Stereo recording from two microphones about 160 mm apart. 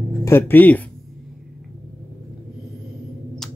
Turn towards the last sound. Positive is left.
turn(degrees=0)  # may be behind; listen again after turning